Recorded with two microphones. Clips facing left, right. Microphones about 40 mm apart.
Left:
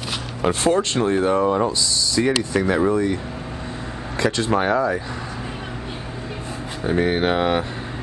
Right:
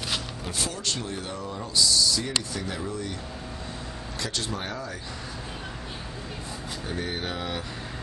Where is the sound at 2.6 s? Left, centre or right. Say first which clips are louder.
Left 14 dB; left.